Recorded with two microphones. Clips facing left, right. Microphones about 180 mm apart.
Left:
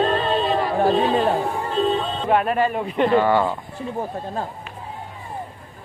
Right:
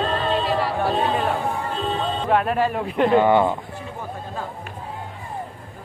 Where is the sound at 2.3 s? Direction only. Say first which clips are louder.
Left 1 dB; 5° left (ahead or behind).